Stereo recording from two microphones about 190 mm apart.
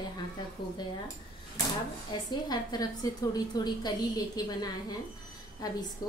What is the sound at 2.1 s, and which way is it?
Speech, 20° left (ahead or behind).